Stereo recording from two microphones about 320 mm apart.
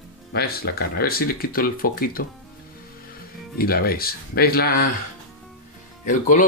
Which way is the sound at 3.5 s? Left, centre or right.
Left.